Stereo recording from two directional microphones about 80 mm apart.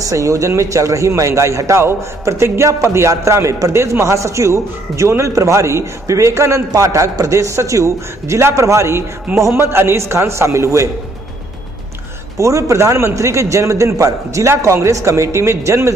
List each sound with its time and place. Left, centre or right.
0.0 s a man's voice: right
12.4 s a man's voice: right